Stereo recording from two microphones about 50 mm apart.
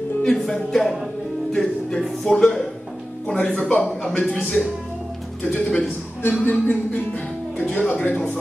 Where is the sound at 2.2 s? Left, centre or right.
Centre.